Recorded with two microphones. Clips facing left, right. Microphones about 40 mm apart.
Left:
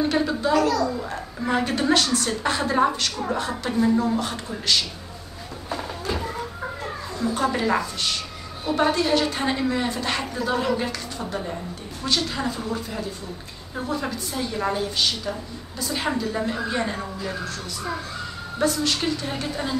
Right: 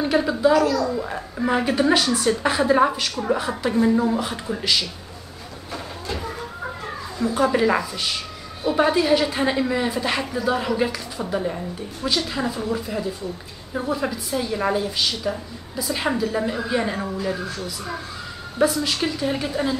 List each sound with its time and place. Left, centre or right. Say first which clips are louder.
0.1 s a child's voice: right 4 dB; centre
7.2 s a woman's voice: right 4 dB; centre
13.7 s a woman's voice: right 3 dB; centre
18.6 s a woman's voice: right 3 dB; centre